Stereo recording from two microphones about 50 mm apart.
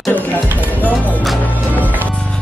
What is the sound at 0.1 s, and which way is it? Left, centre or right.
Music, left.